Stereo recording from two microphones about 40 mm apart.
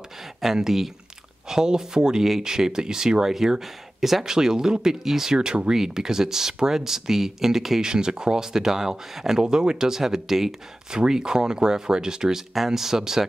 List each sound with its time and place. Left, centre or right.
0.6 s speech: centre
7.8 s speech: centre